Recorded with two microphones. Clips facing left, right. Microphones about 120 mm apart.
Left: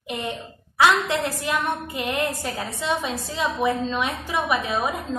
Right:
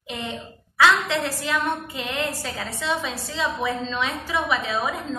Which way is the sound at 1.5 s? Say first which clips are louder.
Right 1 dB; 15° left (ahead or behind).